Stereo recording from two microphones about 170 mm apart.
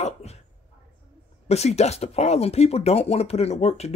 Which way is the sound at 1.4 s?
40° left (ahead or behind).